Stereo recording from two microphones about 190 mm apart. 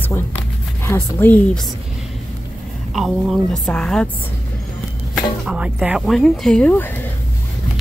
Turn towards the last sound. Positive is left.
turn(degrees=10)  # may be behind; listen again after turning